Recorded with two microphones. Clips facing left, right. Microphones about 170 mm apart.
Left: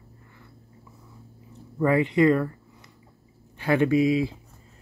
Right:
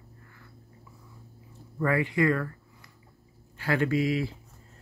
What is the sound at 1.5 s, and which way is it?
Speech, 20° left (ahead or behind).